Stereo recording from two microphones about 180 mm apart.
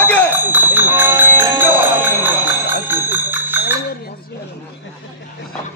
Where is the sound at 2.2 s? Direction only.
10° right (ahead or behind).